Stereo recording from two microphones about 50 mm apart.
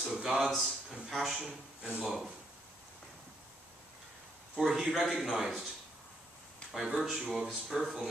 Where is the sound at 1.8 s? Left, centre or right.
Right.